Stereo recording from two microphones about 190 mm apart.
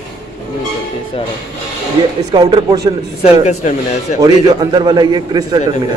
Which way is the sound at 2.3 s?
20° right (ahead or behind).